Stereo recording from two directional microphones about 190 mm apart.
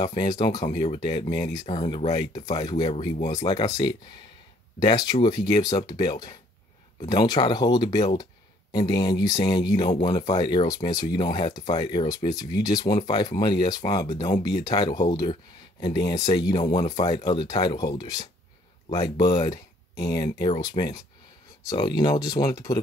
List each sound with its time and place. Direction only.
0.0 s speech: 20° left (ahead or behind)
4.7 s speech: 20° left (ahead or behind)